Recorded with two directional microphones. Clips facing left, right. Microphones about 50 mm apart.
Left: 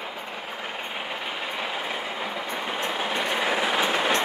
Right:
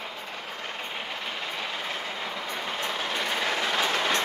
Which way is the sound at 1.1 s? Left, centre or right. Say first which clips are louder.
Left 2 dB; centre.